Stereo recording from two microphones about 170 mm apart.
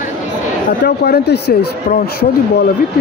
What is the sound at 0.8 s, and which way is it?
Speech, 70° left (ahead or behind).